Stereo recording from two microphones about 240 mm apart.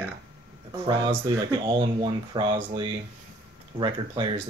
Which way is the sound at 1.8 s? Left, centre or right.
Centre.